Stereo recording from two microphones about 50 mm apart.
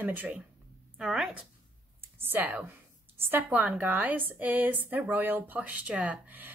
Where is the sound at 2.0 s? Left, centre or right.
Right.